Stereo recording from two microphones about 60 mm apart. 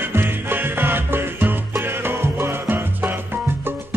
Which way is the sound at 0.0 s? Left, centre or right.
Right.